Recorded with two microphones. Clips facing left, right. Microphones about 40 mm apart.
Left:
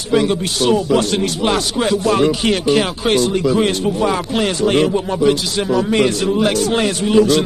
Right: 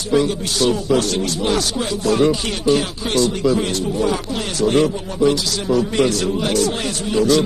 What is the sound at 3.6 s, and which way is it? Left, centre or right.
Speech, left.